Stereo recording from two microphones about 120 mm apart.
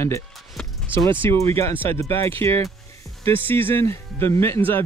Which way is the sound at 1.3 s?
20° left (ahead or behind).